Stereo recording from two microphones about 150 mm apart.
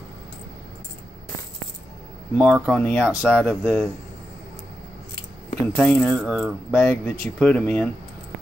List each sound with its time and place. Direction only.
2.3 s speech: 10° right (ahead or behind)
2.7 s speech: 10° left (ahead or behind)
3.0 s speech: 5° right (ahead or behind)
3.4 s speech: 10° left (ahead or behind)
5.8 s speech: 10° left (ahead or behind)
6.0 s speech: centre (ahead or behind)
6.7 s speech: 15° left (ahead or behind)